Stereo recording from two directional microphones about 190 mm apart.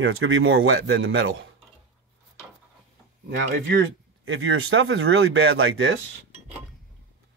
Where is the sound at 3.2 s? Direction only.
70° right (ahead or behind).